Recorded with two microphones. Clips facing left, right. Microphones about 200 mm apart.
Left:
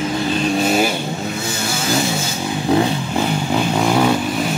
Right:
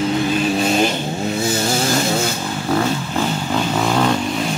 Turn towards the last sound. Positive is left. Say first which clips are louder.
# left 2 dB
turn(degrees=10)  # may be behind; listen again after turning